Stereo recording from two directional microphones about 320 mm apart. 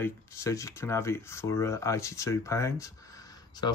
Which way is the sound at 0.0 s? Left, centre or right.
Centre.